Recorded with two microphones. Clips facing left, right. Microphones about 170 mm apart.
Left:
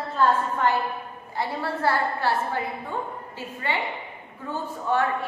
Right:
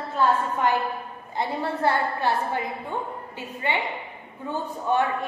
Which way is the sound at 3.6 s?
20° right (ahead or behind).